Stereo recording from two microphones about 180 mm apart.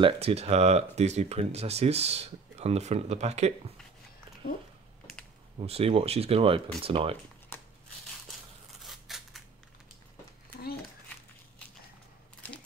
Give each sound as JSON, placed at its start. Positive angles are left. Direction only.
{"t": 0.0, "sound": "speech", "side_deg": -35}
{"t": 5.6, "sound": "speech", "side_deg": -35}
{"t": 7.5, "sound": "a sound", "side_deg": 15}
{"t": 8.8, "sound": "scissors", "side_deg": 0}